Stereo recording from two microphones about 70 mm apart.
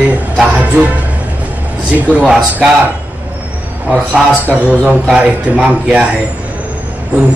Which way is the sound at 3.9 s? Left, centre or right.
Centre.